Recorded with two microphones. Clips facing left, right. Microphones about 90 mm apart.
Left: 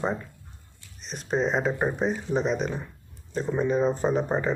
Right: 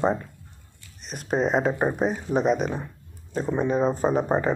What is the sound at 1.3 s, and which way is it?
Speech, 10° right (ahead or behind).